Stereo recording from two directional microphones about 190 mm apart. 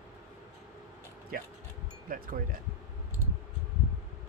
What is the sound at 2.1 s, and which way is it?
Speech, 50° right (ahead or behind).